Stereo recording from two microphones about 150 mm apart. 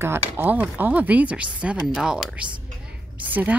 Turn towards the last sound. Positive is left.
turn(degrees=-10)  # may be behind; listen again after turning